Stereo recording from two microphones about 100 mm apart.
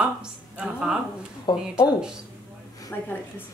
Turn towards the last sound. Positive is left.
turn(degrees=20)  # may be behind; listen again after turning